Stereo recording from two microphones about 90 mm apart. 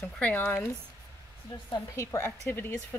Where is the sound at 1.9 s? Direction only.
35° left (ahead or behind).